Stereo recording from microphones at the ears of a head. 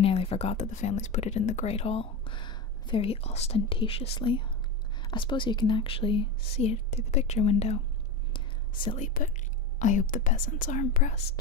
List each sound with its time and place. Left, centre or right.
0.0 s speech: left
8.3 s whispering: left
9.8 s speech: left